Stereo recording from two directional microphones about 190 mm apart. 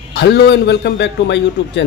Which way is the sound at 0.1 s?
65° left (ahead or behind).